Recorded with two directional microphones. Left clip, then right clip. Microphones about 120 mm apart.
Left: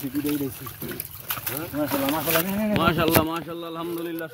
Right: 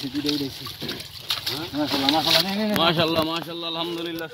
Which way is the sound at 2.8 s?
90° right.